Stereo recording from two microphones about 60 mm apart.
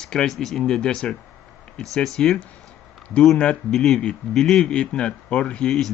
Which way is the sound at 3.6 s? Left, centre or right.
Centre.